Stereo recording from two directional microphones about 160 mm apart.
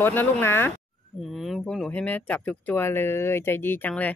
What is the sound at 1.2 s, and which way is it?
Speech, centre (ahead or behind).